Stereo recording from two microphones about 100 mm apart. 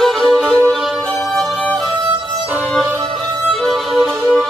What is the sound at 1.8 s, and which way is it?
Music, 40° right (ahead or behind).